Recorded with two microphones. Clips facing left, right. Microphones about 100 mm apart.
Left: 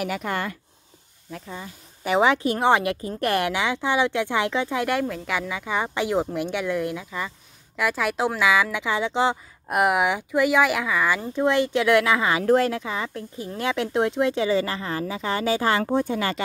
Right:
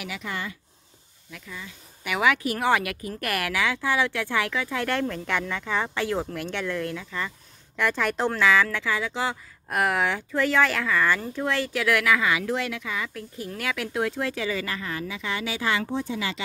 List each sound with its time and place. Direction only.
0.0 s speech: 50° left (ahead or behind)
1.3 s speech: 35° left (ahead or behind)